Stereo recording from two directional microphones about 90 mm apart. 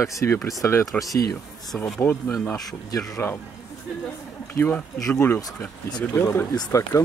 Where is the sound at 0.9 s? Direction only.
Centre (ahead or behind).